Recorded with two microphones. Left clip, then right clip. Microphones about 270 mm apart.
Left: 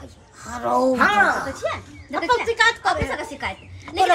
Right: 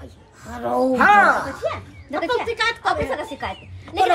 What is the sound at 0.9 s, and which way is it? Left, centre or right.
Speech, centre.